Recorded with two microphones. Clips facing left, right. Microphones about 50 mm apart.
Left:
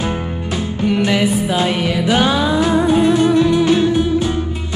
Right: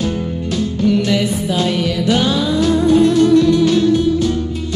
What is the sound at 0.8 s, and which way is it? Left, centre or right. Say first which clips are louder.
Music: even; left.